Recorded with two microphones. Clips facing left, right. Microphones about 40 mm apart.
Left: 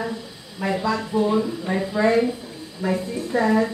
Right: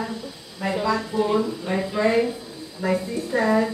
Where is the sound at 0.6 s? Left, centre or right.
Centre.